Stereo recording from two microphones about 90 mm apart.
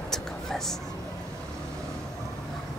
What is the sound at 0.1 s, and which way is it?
Whispering, 5° left (ahead or behind).